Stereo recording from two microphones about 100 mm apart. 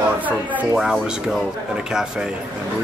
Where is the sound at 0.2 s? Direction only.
15° right (ahead or behind).